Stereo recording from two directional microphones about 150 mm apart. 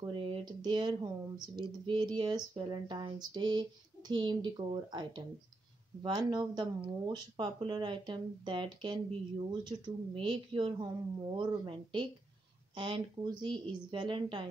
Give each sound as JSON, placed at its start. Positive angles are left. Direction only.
{"t": 0.0, "sound": "speech", "side_deg": -35}